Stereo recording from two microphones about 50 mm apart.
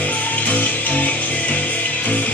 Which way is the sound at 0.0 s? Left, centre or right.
Left.